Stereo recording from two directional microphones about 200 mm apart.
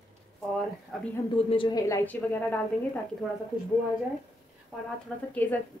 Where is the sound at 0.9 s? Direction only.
Centre (ahead or behind).